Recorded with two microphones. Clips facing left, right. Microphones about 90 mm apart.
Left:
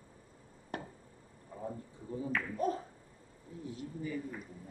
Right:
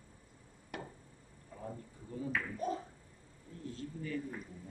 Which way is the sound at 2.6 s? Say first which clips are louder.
Left 4 dB; 45° left (ahead or behind).